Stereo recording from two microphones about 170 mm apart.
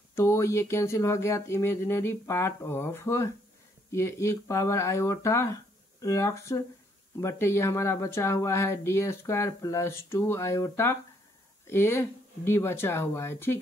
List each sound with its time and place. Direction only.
0.1 s speech: 15° left (ahead or behind)